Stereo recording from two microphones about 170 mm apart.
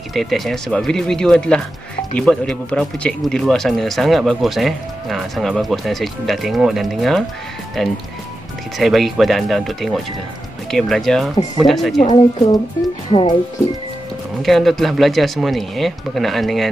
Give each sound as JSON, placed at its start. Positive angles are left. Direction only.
{"t": 0.1, "sound": "speech", "side_deg": 0}
{"t": 12.1, "sound": "speech", "side_deg": 25}
{"t": 14.4, "sound": "speech", "side_deg": 0}